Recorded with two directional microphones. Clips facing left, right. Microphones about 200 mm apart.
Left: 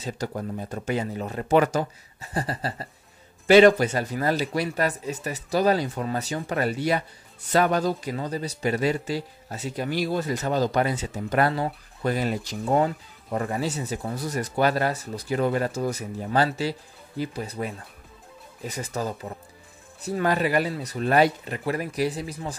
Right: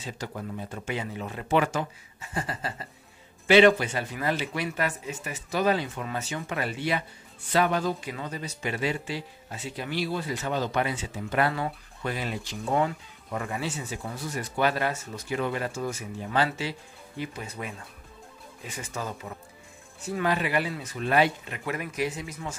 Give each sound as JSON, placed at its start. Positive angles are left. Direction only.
{"t": 0.0, "sound": "speech", "side_deg": 40}